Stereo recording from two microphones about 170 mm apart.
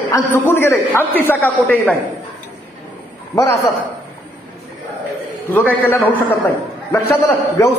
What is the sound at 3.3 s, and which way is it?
Speech, 20° left (ahead or behind).